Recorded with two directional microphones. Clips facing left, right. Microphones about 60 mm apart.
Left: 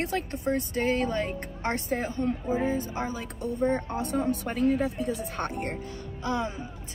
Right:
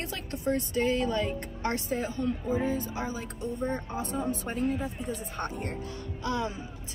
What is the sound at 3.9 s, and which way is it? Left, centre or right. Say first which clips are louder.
Speech: left 4 dB; left.